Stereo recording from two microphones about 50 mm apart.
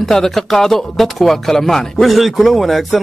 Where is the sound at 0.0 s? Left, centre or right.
Centre.